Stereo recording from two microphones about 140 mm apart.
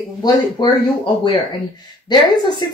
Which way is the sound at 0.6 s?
35° left (ahead or behind).